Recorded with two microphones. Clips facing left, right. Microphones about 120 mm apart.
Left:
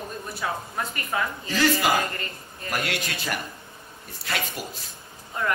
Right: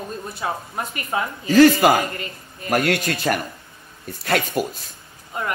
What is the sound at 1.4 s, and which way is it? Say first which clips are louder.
Speech: right 12 dB; 55° right (ahead or behind).